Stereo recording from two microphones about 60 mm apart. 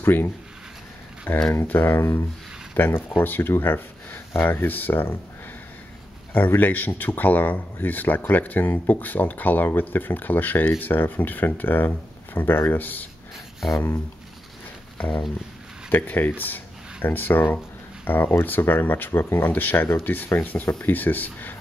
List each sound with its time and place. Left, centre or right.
0.0 s speech: left
1.5 s speech: left
6.3 s speech: left
13.7 s speech: left
15.0 s speech: centre
15.9 s speech: left